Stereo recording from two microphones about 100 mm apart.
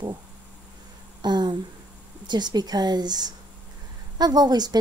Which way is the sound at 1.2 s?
45° right (ahead or behind).